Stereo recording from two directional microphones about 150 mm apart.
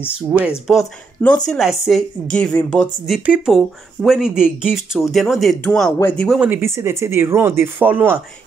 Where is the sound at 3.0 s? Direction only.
5° right (ahead or behind).